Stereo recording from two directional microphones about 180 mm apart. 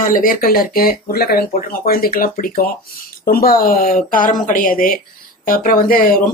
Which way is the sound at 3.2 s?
55° left (ahead or behind).